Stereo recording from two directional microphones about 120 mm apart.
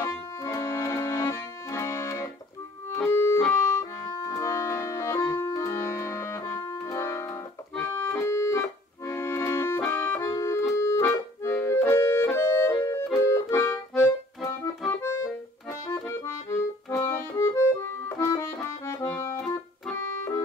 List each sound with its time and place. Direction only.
0.0 s accordion: 25° left (ahead or behind)
3.1 s music: 20° left (ahead or behind)
4.4 s accordion: 25° left (ahead or behind)
5.3 s music: 25° left (ahead or behind)
7.7 s accordion: 15° left (ahead or behind)